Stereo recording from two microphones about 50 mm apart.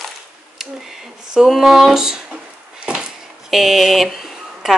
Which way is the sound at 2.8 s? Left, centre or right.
Centre.